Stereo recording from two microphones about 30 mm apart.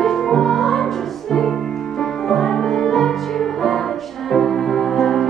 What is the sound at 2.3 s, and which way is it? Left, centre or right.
Music, centre.